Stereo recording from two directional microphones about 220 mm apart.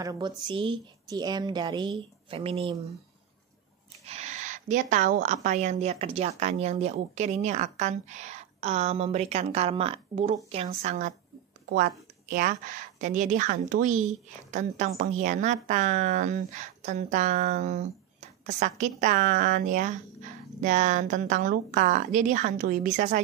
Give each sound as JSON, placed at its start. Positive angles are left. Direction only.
{"t": 0.0, "sound": "a woman's voice", "side_deg": -20}
{"t": 4.0, "sound": "a woman's voice", "side_deg": -30}